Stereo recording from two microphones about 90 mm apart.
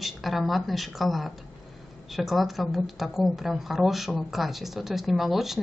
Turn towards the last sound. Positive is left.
turn(degrees=0)  # may be behind; listen again after turning